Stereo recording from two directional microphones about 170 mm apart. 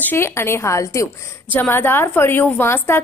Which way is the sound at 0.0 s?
15° left (ahead or behind).